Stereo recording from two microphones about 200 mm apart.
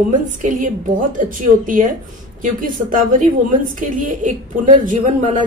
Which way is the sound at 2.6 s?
45° right (ahead or behind).